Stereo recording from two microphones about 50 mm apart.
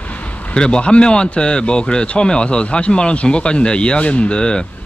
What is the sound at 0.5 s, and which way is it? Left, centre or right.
Speech, centre.